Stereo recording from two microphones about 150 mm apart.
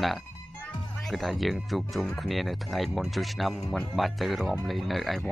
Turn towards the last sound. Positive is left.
turn(degrees=0)  # may be behind; listen again after turning